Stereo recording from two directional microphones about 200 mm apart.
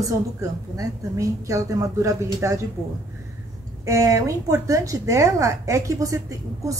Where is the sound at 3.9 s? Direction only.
15° right (ahead or behind).